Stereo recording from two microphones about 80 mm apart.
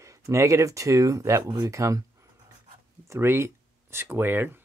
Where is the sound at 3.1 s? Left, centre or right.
Right.